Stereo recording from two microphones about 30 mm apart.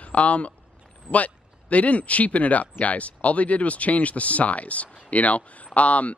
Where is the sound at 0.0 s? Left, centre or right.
Left.